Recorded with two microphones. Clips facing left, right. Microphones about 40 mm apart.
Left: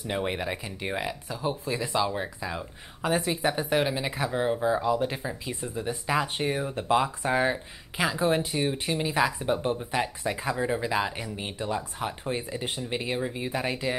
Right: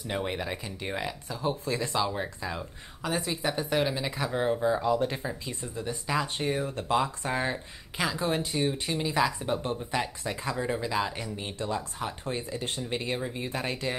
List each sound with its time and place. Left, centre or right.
0.1 s speech: centre
3.0 s a woman's voice: left